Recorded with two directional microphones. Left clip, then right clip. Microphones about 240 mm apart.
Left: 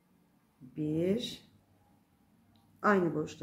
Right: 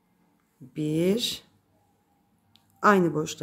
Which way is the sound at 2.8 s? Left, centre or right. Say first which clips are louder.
Right 8 dB; right.